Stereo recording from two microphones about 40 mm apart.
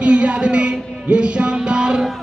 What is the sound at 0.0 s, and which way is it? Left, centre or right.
Music, right.